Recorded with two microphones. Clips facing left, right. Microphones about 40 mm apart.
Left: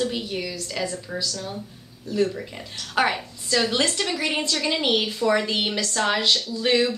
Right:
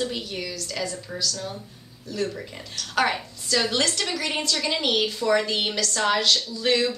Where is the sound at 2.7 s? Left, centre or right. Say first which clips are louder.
Left 1 dB; centre.